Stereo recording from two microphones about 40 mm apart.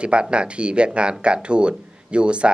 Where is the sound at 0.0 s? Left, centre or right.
Right.